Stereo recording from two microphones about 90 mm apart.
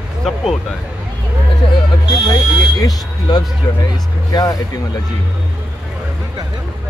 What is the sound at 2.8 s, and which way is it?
Speech, 45° left (ahead or behind).